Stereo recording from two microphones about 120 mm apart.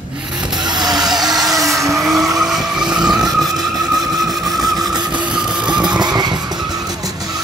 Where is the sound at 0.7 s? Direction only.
35° right (ahead or behind).